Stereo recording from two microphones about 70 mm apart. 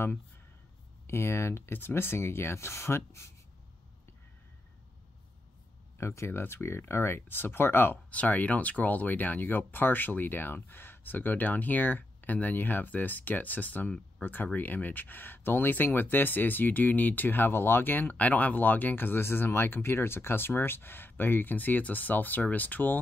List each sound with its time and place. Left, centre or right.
1.0 s speech: left
5.9 s speech: left